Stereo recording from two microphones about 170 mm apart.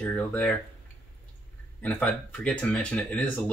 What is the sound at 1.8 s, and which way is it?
Speech, 10° left (ahead or behind).